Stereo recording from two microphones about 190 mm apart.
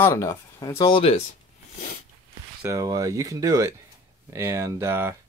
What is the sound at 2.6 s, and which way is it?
Speech, 15° right (ahead or behind).